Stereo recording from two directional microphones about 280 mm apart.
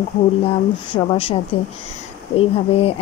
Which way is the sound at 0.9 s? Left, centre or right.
Centre.